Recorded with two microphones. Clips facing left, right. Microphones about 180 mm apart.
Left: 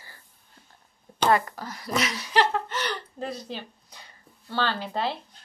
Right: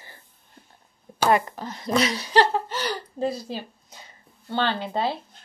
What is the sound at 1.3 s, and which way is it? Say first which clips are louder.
Speech: right 1 dB; 20° right (ahead or behind).